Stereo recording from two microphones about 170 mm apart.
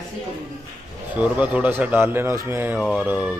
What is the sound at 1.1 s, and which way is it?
Speech, 10° right (ahead or behind).